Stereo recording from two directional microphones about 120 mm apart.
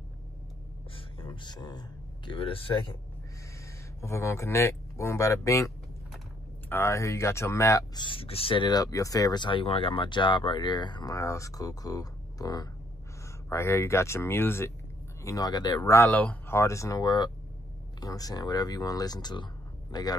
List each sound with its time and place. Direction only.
0.9 s speech: 45° left (ahead or behind)
4.0 s speech: 25° left (ahead or behind)
6.7 s speech: 25° left (ahead or behind)
8.0 s speech: 50° left (ahead or behind); by 14.7 s 20° left (ahead or behind)
15.2 s speech: 30° left (ahead or behind)
16.1 s speech: 15° left (ahead or behind); by 20.2 s 35° left (ahead or behind)